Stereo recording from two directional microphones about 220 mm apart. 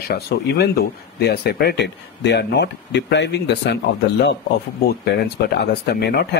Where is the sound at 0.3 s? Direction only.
45° left (ahead or behind).